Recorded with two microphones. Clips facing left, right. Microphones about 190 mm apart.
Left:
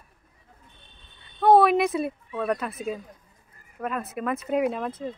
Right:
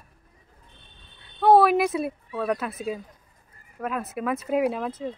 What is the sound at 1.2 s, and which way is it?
Speech, centre (ahead or behind).